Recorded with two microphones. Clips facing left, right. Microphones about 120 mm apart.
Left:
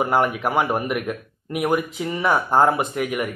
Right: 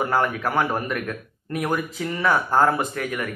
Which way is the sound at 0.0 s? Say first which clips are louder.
Left 2 dB; 20° left (ahead or behind).